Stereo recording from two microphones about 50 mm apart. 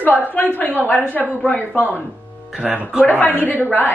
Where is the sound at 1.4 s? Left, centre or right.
Left.